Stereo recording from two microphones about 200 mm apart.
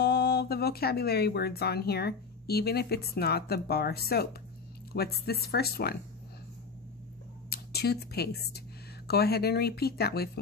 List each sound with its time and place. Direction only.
0.0 s speech: 55° left (ahead or behind)
7.4 s speech: 50° left (ahead or behind)